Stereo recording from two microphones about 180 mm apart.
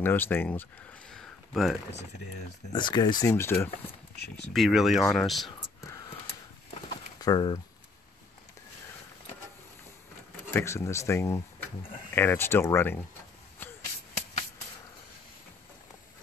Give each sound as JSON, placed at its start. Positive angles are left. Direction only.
{"t": 0.0, "sound": "speech", "side_deg": 10}
{"t": 2.7, "sound": "speech", "side_deg": 25}
{"t": 4.5, "sound": "speech", "side_deg": 0}
{"t": 7.2, "sound": "speech", "side_deg": 25}
{"t": 10.5, "sound": "speech", "side_deg": 15}